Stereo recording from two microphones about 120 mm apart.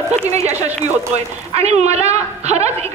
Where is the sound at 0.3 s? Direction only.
65° right (ahead or behind).